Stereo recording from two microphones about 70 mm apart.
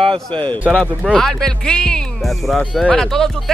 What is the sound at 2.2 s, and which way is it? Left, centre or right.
Speech, centre.